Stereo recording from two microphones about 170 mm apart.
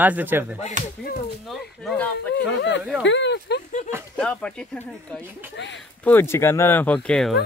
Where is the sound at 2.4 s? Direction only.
90° left.